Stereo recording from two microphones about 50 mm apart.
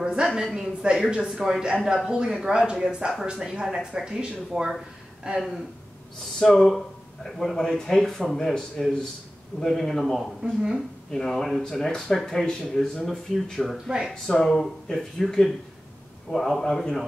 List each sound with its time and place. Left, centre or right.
0.0 s a sound: centre
0.4 s speech: centre
5.2 s speech: right
6.4 s a man's voice: centre
10.4 s speech: centre
11.1 s speech: centre
13.7 s speech: centre
14.2 s a man's voice: centre